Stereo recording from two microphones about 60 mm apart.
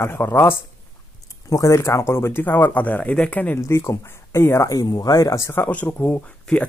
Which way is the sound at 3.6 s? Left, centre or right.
Left.